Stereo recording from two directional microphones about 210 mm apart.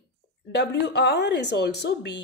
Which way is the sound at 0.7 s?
55° left (ahead or behind).